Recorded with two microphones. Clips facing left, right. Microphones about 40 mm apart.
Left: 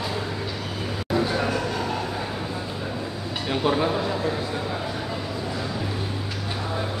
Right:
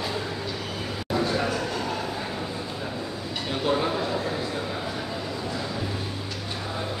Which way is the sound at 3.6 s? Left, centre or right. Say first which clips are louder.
Left 2 dB; centre.